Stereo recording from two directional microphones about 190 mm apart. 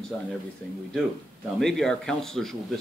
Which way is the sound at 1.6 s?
Centre (ahead or behind).